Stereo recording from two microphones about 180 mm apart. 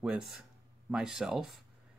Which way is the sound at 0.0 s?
5° right (ahead or behind).